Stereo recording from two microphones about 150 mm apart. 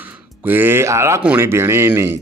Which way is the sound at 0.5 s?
15° right (ahead or behind).